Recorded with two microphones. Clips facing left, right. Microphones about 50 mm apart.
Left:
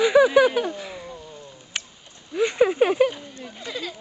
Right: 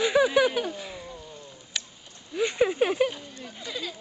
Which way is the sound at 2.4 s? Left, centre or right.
Centre.